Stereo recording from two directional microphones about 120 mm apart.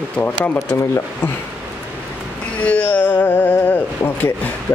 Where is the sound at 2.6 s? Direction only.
15° left (ahead or behind).